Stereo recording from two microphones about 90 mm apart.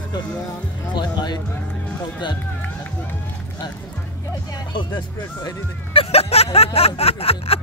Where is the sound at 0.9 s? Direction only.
55° left (ahead or behind).